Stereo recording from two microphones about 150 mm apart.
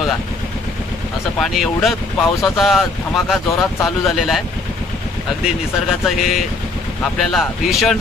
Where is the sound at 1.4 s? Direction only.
Centre (ahead or behind).